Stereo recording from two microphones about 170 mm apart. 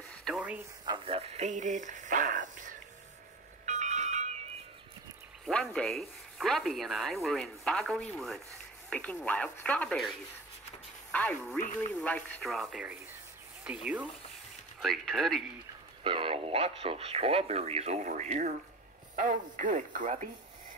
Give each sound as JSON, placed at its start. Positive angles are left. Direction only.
{"t": 0.2, "sound": "a sound", "side_deg": -5}
{"t": 0.8, "sound": "speech", "side_deg": -30}
{"t": 3.6, "sound": "music", "side_deg": -45}
{"t": 5.5, "sound": "speech", "side_deg": 5}
{"t": 16.0, "sound": "speech", "side_deg": -30}